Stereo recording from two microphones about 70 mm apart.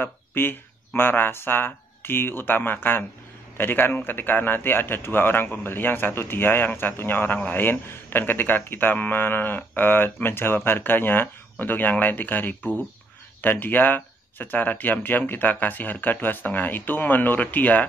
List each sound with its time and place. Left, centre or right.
0.0 s a man's voice: left